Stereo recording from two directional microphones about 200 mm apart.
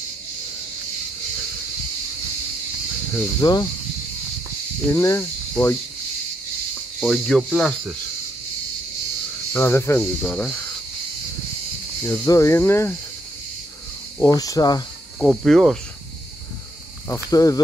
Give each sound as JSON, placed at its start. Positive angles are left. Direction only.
{"t": 3.1, "sound": "speech", "side_deg": 10}
{"t": 4.9, "sound": "speech", "side_deg": 15}
{"t": 7.0, "sound": "speech", "side_deg": 0}
{"t": 9.5, "sound": "speech", "side_deg": 10}
{"t": 12.1, "sound": "speech", "side_deg": 15}
{"t": 14.2, "sound": "speech", "side_deg": 15}
{"t": 15.1, "sound": "speech", "side_deg": 0}
{"t": 17.1, "sound": "speech", "side_deg": 15}